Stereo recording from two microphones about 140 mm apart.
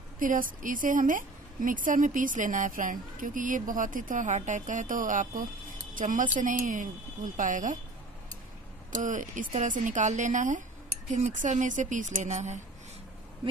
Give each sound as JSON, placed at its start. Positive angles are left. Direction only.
{"t": 0.2, "sound": "a woman's voice", "side_deg": -75}
{"t": 8.9, "sound": "speech", "side_deg": -65}